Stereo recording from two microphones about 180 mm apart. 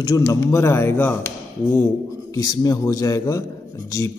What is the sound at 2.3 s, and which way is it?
A man's voice, 20° left (ahead or behind).